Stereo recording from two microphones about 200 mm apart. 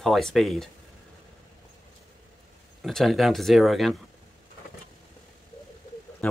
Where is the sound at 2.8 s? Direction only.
Centre (ahead or behind).